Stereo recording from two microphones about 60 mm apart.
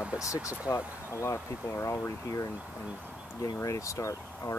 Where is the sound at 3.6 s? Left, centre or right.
Left.